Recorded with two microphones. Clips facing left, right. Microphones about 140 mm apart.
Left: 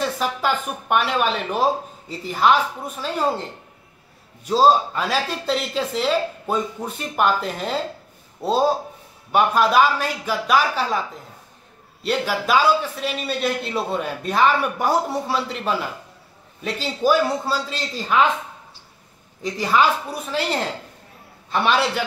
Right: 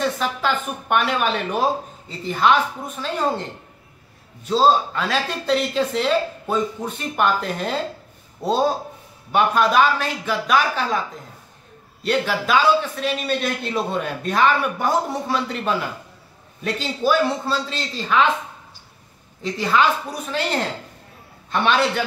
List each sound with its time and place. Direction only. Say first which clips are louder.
0.0 s a man's voice: even; 5° left (ahead or behind)
4.5 s a man's voice: left 1 dB; 10° left (ahead or behind)
12.0 s a man's voice: right 1 dB; 5° left (ahead or behind)
19.4 s a man's voice: even; 10° left (ahead or behind)